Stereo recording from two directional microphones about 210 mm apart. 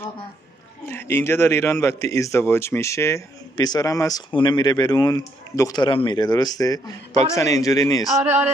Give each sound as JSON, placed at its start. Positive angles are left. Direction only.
{"t": 0.8, "sound": "speech", "side_deg": 10}